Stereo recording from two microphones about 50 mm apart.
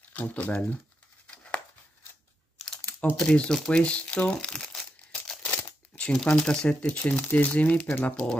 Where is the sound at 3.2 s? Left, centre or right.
Centre.